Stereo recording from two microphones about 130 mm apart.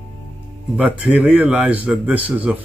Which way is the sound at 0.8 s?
10° right (ahead or behind).